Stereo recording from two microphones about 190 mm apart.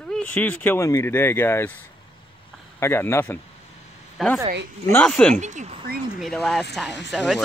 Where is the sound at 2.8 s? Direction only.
15° left (ahead or behind).